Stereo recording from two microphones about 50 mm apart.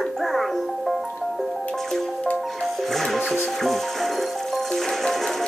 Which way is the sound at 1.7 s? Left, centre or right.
Centre.